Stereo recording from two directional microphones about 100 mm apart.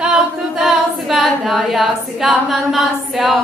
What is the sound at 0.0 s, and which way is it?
A capella, 5° right (ahead or behind).